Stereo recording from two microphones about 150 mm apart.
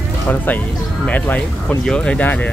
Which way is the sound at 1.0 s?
10° left (ahead or behind).